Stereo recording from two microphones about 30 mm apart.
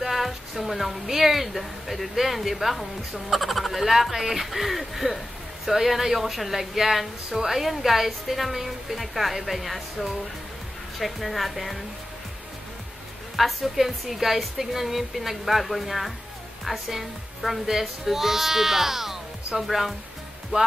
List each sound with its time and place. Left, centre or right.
0.0 s a woman's voice: centre
13.4 s speech: centre
20.5 s music: right